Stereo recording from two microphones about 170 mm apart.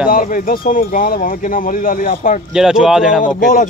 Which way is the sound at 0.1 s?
55° left (ahead or behind).